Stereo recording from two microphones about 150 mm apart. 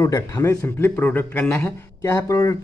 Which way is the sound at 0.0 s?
20° left (ahead or behind).